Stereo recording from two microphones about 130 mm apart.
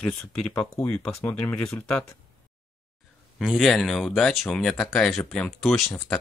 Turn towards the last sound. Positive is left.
turn(degrees=5)  # may be behind; listen again after turning